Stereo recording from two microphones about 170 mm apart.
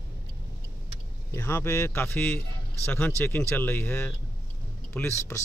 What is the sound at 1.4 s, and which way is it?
Speech, 15° left (ahead or behind).